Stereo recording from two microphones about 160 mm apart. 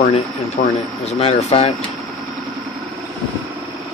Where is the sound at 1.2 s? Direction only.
40° left (ahead or behind).